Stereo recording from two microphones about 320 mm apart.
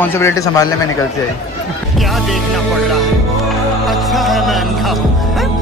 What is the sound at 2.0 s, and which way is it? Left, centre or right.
Music, centre.